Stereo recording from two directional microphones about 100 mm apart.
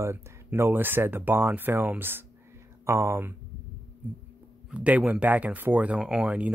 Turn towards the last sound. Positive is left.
turn(degrees=-15)  # may be behind; listen again after turning